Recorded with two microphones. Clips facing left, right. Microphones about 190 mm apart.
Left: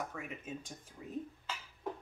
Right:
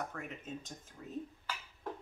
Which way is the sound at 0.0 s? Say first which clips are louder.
Even; 5° left (ahead or behind).